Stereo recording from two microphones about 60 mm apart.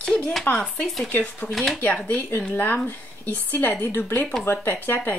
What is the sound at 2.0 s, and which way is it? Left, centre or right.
Speech, left.